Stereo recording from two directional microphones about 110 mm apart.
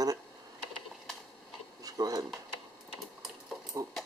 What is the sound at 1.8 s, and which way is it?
Dishes, 35° right (ahead or behind).